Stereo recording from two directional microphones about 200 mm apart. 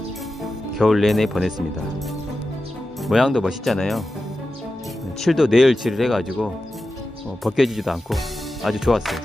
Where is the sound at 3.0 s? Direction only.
Centre (ahead or behind).